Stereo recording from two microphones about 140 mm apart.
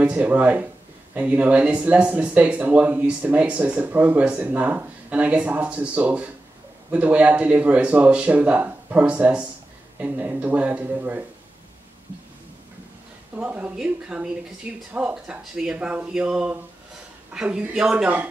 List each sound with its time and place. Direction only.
0.0 s speech: 10° right (ahead or behind)
13.4 s speech: 10° right (ahead or behind)